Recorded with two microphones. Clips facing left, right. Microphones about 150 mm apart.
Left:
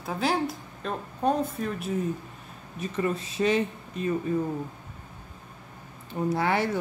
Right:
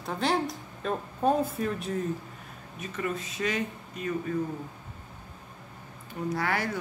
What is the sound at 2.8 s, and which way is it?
Speech, 30° left (ahead or behind).